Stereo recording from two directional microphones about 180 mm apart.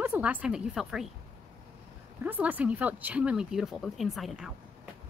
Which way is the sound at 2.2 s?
10° right (ahead or behind).